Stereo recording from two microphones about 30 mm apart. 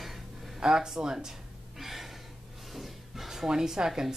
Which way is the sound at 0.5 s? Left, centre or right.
Right.